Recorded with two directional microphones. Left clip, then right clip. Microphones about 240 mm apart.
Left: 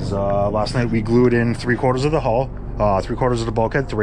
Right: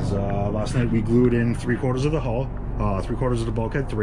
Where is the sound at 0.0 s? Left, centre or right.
Centre.